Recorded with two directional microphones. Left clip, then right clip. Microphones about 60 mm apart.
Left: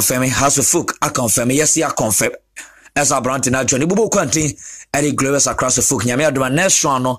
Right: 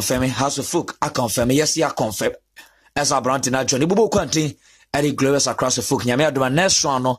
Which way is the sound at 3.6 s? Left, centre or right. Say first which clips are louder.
Even; centre.